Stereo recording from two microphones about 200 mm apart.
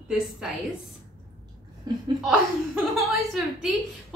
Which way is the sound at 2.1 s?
5° right (ahead or behind).